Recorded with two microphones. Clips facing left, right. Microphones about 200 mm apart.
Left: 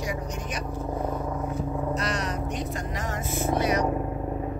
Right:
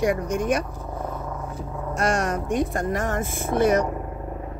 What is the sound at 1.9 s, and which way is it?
Speech, 50° right (ahead or behind).